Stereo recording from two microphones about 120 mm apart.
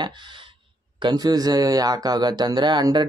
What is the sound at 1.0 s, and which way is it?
Speech, 35° right (ahead or behind).